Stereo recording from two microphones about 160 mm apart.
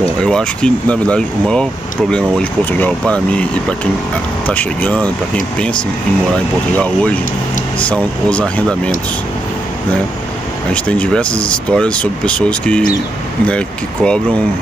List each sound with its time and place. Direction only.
0.0 s speech: 5° left (ahead or behind)
6.8 s speech: 10° left (ahead or behind)
10.7 s speech: 10° left (ahead or behind)